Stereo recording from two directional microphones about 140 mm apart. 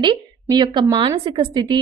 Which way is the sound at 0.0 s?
30° right (ahead or behind).